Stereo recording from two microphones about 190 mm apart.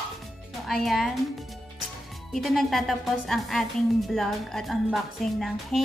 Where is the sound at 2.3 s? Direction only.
Centre (ahead or behind).